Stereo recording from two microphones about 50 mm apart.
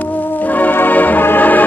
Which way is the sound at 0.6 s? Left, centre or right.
Left.